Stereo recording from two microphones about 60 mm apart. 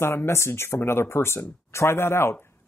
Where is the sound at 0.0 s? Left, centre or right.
Left.